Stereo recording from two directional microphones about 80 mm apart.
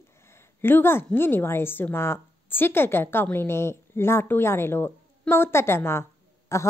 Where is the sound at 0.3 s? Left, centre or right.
Left.